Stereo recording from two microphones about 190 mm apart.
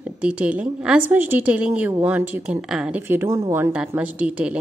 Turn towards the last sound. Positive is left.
turn(degrees=-5)  # may be behind; listen again after turning